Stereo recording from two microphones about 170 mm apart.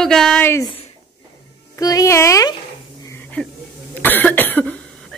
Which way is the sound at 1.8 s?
20° left (ahead or behind).